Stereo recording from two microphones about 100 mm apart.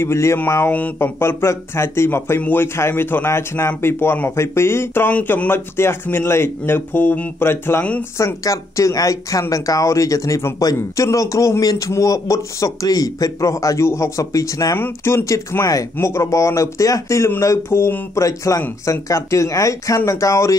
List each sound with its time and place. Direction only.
0.0 s speech: 25° left (ahead or behind)
1.0 s speech: 25° left (ahead or behind)
8.2 s speech: 30° left (ahead or behind)